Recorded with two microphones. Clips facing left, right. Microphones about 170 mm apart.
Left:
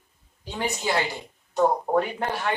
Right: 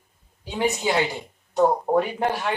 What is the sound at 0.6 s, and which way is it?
Speech, 15° right (ahead or behind).